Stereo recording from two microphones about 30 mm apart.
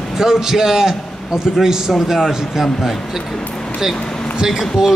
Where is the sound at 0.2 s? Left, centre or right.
Centre.